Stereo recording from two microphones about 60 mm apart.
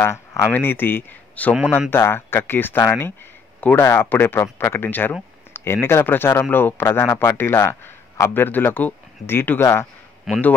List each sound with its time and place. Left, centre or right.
0.0 s a sound: left
0.5 s speech: left
1.4 s speech: left
1.9 s speech: left
10.3 s a man's voice: centre